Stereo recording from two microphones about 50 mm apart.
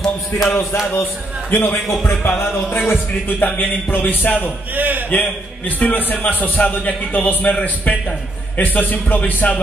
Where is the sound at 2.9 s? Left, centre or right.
Left.